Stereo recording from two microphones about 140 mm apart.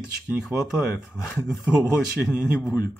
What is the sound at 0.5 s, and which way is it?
Speech, 15° right (ahead or behind).